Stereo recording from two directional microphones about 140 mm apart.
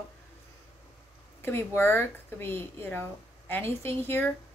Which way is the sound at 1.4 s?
15° left (ahead or behind).